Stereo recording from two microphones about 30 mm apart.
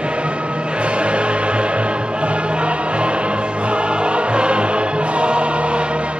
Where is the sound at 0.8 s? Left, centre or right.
Right.